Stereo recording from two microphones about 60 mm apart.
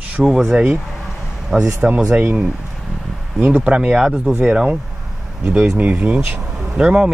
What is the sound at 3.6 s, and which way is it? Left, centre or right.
Speech, centre.